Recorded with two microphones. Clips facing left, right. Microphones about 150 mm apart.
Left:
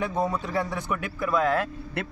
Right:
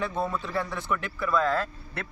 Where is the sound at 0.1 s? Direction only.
15° left (ahead or behind).